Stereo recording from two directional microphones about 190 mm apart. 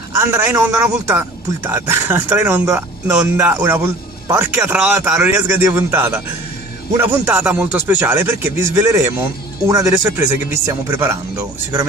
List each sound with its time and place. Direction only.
0.2 s speech: 15° right (ahead or behind)